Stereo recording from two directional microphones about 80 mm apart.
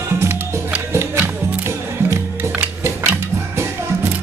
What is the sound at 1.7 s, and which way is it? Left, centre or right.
Music, right.